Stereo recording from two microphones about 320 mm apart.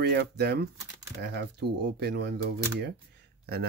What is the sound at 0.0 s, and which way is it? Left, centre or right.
Speech, right.